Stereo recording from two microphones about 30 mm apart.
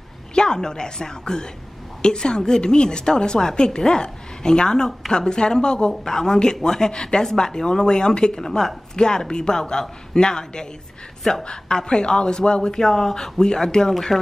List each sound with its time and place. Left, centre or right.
0.3 s a woman's voice: left
8.4 s speech: centre
8.9 s a woman's voice: left
12.7 s a woman's voice: centre